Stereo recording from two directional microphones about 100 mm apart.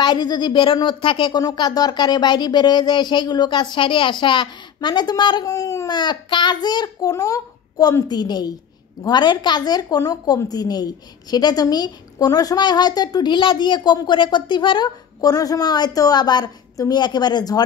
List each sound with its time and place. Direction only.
0.0 s a woman's voice: 45° left (ahead or behind)
1.4 s a woman's voice: 40° left (ahead or behind)
5.9 s a woman's voice: 50° left (ahead or behind)
15.1 s a woman's voice: 40° left (ahead or behind)